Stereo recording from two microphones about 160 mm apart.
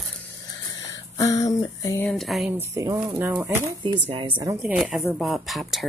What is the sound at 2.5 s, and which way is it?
Speech, 20° right (ahead or behind).